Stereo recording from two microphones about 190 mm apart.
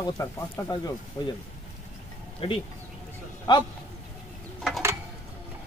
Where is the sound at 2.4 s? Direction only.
30° left (ahead or behind).